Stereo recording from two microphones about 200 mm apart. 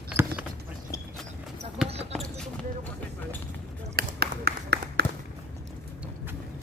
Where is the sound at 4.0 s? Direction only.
50° right (ahead or behind).